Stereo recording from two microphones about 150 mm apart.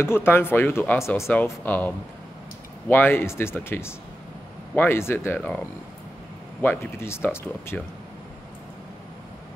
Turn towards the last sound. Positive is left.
turn(degrees=15)  # may be behind; listen again after turning